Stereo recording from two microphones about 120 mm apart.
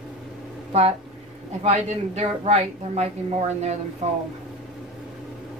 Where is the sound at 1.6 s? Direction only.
60° right (ahead or behind).